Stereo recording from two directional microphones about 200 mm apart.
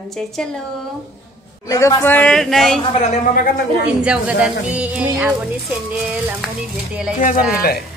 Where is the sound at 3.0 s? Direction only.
40° left (ahead or behind).